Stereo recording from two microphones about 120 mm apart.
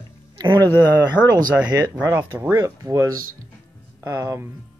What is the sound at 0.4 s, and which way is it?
Speech, 30° right (ahead or behind).